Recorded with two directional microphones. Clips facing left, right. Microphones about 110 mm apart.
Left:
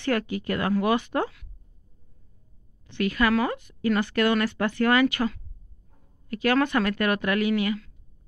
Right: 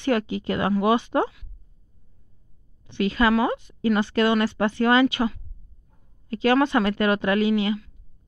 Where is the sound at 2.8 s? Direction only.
25° right (ahead or behind).